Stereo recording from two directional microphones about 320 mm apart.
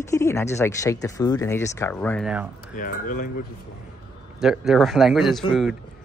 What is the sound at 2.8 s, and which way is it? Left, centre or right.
Speech, left.